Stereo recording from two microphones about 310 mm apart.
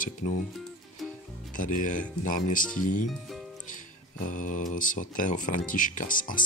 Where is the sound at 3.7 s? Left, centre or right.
Left.